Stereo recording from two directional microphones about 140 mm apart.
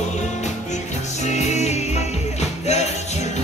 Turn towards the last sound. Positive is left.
turn(degrees=55)  # may be behind; listen again after turning